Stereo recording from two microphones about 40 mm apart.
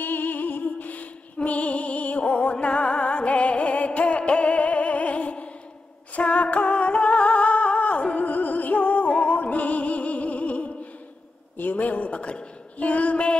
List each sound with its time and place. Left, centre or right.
0.0 s music: left
6.1 s humming: left
11.5 s a sound: left